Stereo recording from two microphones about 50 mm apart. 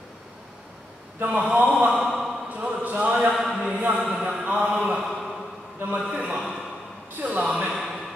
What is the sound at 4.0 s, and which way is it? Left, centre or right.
Mantra, centre.